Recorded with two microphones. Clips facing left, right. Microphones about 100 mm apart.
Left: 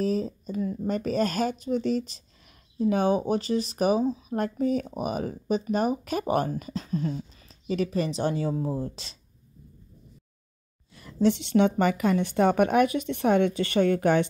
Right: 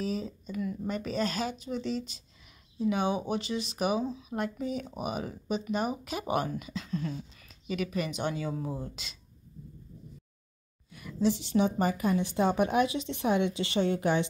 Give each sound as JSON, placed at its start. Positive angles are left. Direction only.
{"t": 0.0, "sound": "speech", "side_deg": 40}
{"t": 10.9, "sound": "a sound", "side_deg": 30}
{"t": 11.1, "sound": "a woman's voice", "side_deg": 65}